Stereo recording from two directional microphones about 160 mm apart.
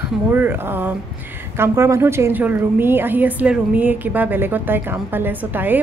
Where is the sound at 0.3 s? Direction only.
10° right (ahead or behind).